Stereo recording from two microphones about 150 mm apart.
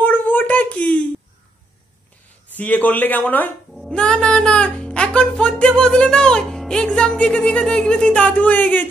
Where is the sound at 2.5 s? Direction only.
10° left (ahead or behind).